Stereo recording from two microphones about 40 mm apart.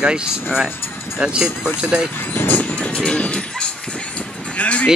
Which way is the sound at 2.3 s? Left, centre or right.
Left.